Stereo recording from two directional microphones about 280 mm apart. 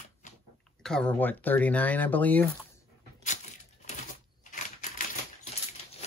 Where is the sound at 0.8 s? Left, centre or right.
Centre.